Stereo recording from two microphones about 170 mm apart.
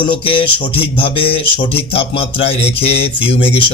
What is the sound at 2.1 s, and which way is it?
A man's voice, 35° left (ahead or behind).